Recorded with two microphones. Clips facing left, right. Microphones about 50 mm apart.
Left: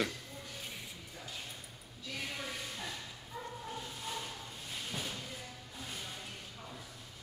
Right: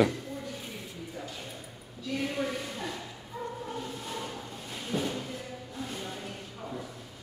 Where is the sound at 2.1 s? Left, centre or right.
Centre.